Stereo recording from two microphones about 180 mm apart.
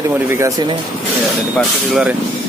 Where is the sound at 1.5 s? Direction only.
5° right (ahead or behind).